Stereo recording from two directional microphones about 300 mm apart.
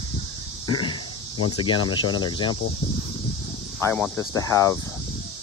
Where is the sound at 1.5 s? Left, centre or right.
Centre.